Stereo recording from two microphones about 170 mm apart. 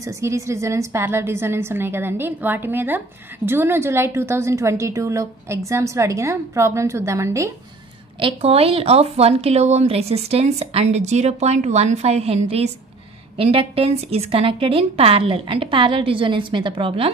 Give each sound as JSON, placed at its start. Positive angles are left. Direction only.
{"t": 0.0, "sound": "a woman's voice", "side_deg": -15}
{"t": 8.2, "sound": "speech", "side_deg": -35}